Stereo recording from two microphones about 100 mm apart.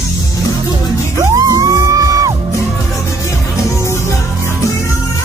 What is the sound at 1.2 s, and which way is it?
Music, 35° right (ahead or behind).